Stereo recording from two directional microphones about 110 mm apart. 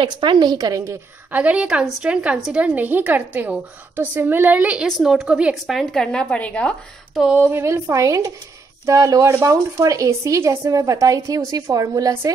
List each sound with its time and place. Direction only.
0.0 s a woman's voice: 50° right (ahead or behind)
1.3 s a woman's voice: 10° right (ahead or behind)
4.8 s a woman's voice: centre (ahead or behind)
7.3 s a woman's voice: 20° right (ahead or behind)